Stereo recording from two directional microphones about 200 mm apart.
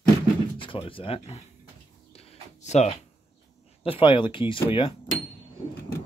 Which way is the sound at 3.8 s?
25° left (ahead or behind).